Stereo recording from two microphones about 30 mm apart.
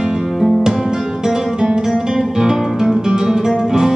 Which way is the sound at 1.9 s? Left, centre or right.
Centre.